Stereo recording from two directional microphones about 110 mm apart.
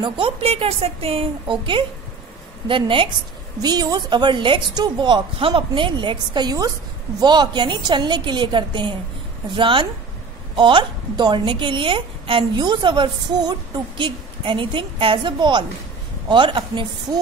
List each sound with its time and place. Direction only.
0.0 s a woman's voice: 60° right (ahead or behind)
3.6 s a woman's voice: 35° right (ahead or behind)